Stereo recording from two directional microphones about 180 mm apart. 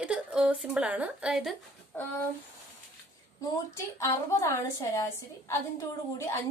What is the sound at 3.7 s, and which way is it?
A woman's voice, 15° left (ahead or behind).